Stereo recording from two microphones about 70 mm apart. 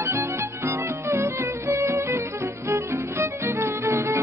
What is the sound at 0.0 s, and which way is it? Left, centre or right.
Music, right.